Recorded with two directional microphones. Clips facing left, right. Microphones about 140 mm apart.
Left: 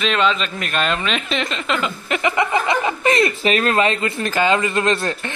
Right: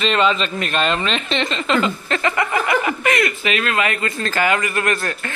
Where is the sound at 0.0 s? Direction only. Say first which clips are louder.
Right 1 dB; centre (ahead or behind).